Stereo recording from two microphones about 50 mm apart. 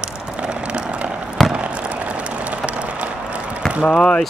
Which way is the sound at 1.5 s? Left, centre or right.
Right.